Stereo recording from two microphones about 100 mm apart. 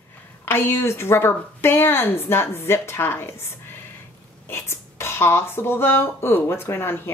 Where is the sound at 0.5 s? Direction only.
25° left (ahead or behind).